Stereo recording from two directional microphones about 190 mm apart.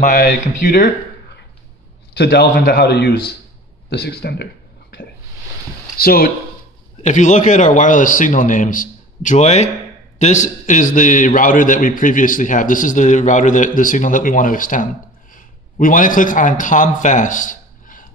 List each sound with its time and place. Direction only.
0.0 s a man's voice: 55° left (ahead or behind)
2.1 s a man's voice: 60° left (ahead or behind)
5.9 s a man's voice: 50° left (ahead or behind)
7.0 s a man's voice: 40° left (ahead or behind)